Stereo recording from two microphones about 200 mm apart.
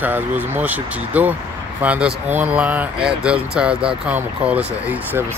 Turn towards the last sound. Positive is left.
turn(degrees=-5)  # may be behind; listen again after turning